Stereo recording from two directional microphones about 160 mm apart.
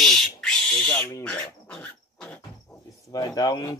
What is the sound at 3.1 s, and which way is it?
Speech, 25° left (ahead or behind).